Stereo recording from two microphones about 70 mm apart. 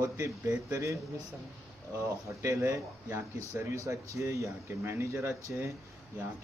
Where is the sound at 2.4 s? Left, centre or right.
Right.